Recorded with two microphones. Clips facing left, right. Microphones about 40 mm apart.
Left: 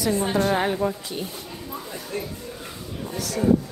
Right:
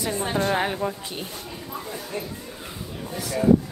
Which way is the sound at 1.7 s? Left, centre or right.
Centre.